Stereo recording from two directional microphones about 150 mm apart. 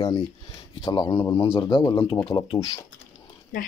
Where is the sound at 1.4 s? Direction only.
35° left (ahead or behind).